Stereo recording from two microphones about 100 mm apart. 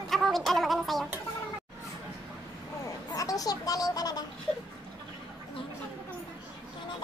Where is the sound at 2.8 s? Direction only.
35° left (ahead or behind).